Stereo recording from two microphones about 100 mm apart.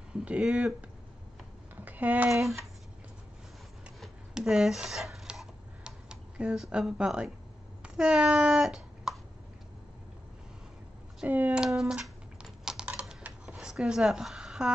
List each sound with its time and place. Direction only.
0.1 s speech: 10° right (ahead or behind)
1.8 s a sound: 15° right (ahead or behind)
2.3 s cat: centre (ahead or behind)
4.0 s a sound: 5° right (ahead or behind)
7.8 s speech: 10° right (ahead or behind)
11.1 s speech: 15° right (ahead or behind)
11.6 s cat: 5° right (ahead or behind)
12.6 s typing: 10° right (ahead or behind)
13.2 s a sound: 10° right (ahead or behind)